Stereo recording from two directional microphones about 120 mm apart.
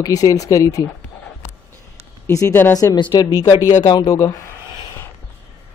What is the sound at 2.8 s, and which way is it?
A man's voice, 35° left (ahead or behind).